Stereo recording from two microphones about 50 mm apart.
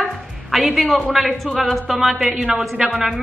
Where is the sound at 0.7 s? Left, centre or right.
Centre.